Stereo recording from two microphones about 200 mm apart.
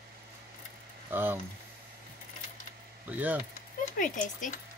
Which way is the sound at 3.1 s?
10° right (ahead or behind).